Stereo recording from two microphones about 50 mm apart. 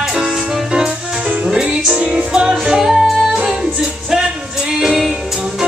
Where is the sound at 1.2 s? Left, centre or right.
Right; by 5.5 s centre.